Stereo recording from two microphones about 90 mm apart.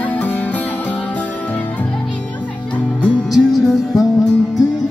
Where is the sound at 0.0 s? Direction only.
15° left (ahead or behind).